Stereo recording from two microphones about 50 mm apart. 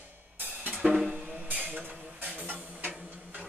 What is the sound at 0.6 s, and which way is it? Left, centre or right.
Music, right.